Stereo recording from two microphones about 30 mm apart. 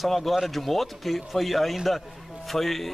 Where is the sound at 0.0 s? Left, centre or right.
Centre.